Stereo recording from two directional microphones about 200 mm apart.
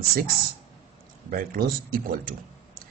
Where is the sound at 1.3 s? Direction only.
45° right (ahead or behind).